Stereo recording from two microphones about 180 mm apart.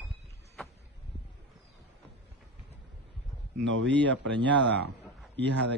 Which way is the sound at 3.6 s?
80° right.